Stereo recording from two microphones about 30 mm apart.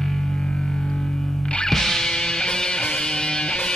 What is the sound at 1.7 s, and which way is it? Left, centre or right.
Music, centre.